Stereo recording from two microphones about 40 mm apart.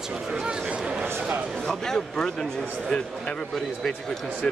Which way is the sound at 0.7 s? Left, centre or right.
Right.